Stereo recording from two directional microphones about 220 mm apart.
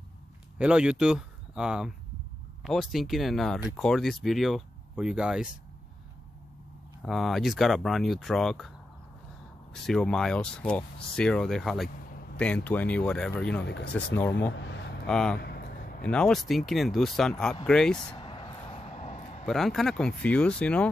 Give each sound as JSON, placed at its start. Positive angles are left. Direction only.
{"t": 0.6, "sound": "speech", "side_deg": -5}
{"t": 7.0, "sound": "speech", "side_deg": 0}
{"t": 9.8, "sound": "speech", "side_deg": 0}
{"t": 13.7, "sound": "speech", "side_deg": 50}
{"t": 13.9, "sound": "speech", "side_deg": 10}
{"t": 14.5, "sound": "a sound", "side_deg": 50}
{"t": 15.0, "sound": "speech", "side_deg": 5}
{"t": 18.1, "sound": "vehicle", "side_deg": 25}
{"t": 19.4, "sound": "speech", "side_deg": 0}